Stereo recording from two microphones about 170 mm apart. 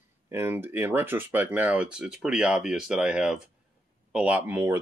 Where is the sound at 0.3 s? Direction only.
15° right (ahead or behind).